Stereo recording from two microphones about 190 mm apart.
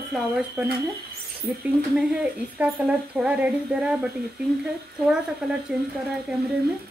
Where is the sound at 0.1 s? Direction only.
5° right (ahead or behind).